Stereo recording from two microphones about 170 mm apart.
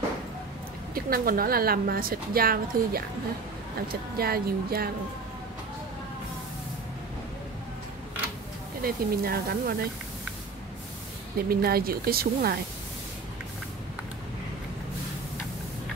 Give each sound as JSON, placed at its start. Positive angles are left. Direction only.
{"t": 0.9, "sound": "a woman's voice", "side_deg": -60}
{"t": 8.8, "sound": "a woman's voice", "side_deg": -65}
{"t": 11.3, "sound": "a woman's voice", "side_deg": -65}